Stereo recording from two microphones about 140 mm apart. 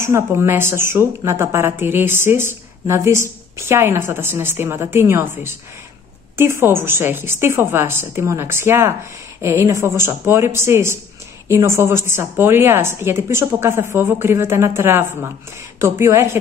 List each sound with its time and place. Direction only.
0.0 s a woman's voice: 20° right (ahead or behind)